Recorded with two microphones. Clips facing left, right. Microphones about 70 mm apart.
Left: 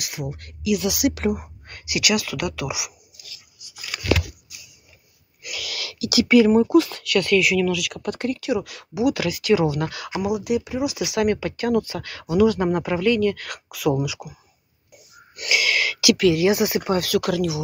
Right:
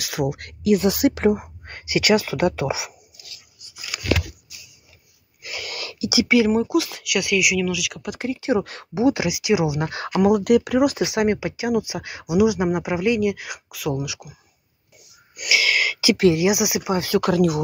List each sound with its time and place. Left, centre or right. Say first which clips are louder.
0.1 s speech: right 10 dB; right
0.7 s speech: right 4 dB; right
5.4 s a sound: right 1 dB; right
6.2 s speech: left 4 dB; centre
8.5 s speech: right 2 dB; right
9.3 s speech: left 1 dB; centre
10.2 s speech: right 7 dB; right
11.1 s speech: even; right; by 14.3 s centre
15.3 s gasp: right 1 dB; centre
16.0 s speech: even; right
16.4 s speech: left 1 dB; centre
17.0 s speech: right 2 dB; right